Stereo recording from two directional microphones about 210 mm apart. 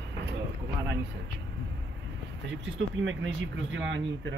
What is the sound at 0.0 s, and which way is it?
Vehicle, 55° right (ahead or behind).